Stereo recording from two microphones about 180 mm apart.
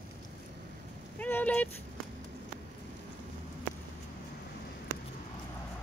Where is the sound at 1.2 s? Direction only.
10° left (ahead or behind).